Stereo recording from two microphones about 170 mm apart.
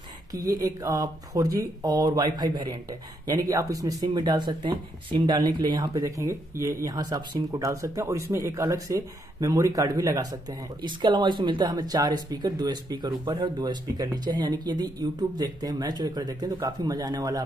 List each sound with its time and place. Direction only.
0.3 s speech: 20° right (ahead or behind)